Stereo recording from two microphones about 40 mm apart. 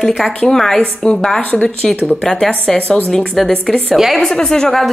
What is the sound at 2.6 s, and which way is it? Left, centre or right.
A woman's voice, centre.